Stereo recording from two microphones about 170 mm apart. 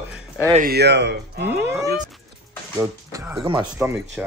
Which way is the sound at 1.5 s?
15° right (ahead or behind).